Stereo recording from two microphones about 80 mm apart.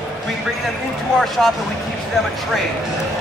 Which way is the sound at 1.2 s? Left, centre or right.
Centre.